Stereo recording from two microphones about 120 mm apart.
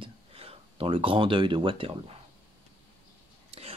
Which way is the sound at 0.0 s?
55° right (ahead or behind).